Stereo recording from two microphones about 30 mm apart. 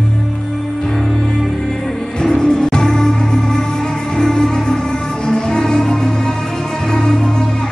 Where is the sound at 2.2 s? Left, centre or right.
Left.